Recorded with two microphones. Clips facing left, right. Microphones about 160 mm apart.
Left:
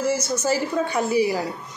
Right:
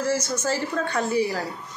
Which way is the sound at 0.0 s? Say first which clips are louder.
Left 2 dB; 10° left (ahead or behind).